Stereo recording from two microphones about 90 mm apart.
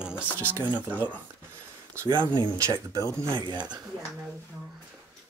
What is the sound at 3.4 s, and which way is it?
Speech, 55° right (ahead or behind).